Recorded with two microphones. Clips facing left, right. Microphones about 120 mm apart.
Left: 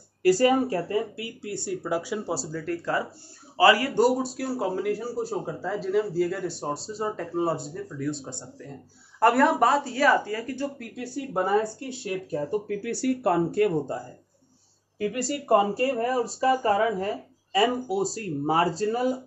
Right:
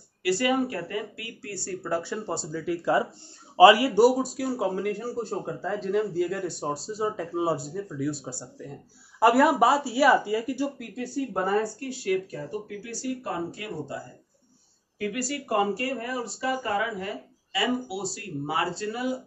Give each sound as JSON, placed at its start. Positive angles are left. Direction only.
{"t": 0.2, "sound": "speech", "side_deg": 40}
{"t": 3.5, "sound": "a man's voice", "side_deg": -15}
{"t": 11.4, "sound": "speech", "side_deg": 15}
{"t": 12.6, "sound": "speech", "side_deg": 60}
{"t": 15.0, "sound": "speech", "side_deg": 25}